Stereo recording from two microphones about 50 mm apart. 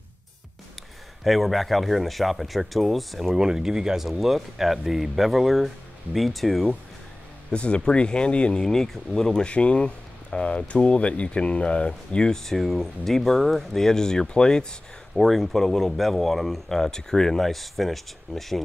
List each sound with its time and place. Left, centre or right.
1.2 s speech: centre
3.3 s speech: centre
7.5 s speech: centre
8.6 s speech: centre
15.1 s speech: centre